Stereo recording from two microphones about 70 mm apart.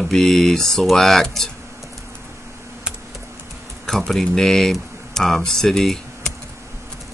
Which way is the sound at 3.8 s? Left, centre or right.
Centre.